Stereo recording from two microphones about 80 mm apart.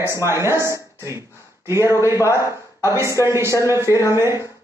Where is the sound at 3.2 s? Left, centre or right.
Right.